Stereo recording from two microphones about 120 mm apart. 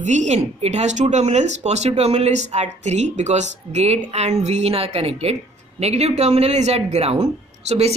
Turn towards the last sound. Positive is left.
turn(degrees=-60)  # may be behind; listen again after turning